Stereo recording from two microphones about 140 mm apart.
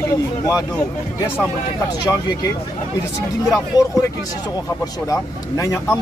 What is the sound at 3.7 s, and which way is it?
Speech, 25° left (ahead or behind).